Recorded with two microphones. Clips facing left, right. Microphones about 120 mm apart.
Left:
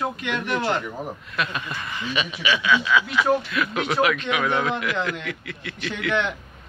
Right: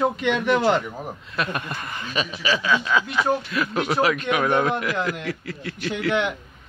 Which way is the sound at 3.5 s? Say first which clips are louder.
Right 1 dB; 35° right (ahead or behind).